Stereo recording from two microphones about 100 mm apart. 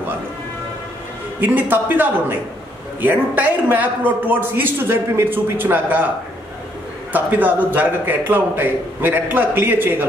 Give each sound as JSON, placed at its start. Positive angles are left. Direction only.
{"t": 1.4, "sound": "a man's voice", "side_deg": -20}
{"t": 7.1, "sound": "a man's voice", "side_deg": -15}